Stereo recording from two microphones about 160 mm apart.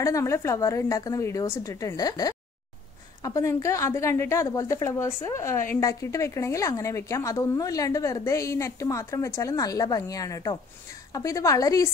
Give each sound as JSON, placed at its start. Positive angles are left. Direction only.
{"t": 0.0, "sound": "a woman's voice", "side_deg": 20}